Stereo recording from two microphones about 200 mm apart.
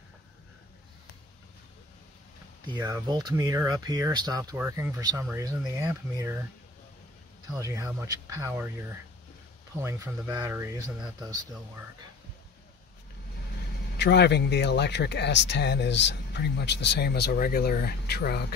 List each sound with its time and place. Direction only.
2.6 s speech: 20° right (ahead or behind)
7.4 s speech: 15° right (ahead or behind)
13.9 s speech: 60° left (ahead or behind)